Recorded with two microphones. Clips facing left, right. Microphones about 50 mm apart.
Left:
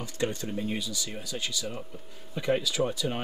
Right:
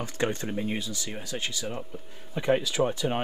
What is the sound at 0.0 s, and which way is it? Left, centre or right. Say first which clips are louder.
Speech: right 2 dB; right.